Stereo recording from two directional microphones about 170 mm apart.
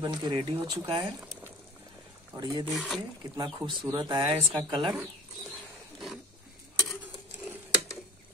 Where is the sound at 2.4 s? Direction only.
25° right (ahead or behind).